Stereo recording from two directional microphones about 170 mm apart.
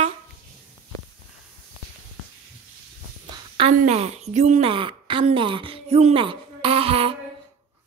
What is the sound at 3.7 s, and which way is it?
A woman's voice, 45° right (ahead or behind).